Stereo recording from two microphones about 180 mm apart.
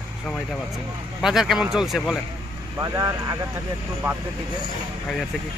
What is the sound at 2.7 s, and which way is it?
Speech, 20° right (ahead or behind).